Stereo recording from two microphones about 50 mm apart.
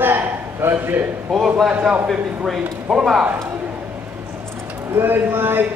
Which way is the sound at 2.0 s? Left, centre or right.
Centre.